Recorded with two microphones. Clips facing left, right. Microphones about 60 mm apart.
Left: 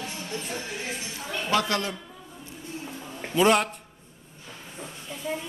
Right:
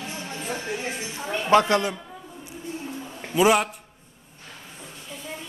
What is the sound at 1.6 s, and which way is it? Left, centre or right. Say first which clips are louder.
Speech: right 5 dB; right.